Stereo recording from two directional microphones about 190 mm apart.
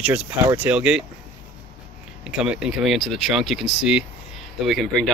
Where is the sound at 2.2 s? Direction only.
5° right (ahead or behind).